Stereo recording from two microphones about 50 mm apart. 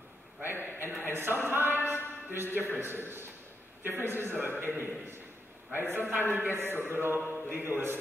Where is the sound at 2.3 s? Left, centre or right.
Right.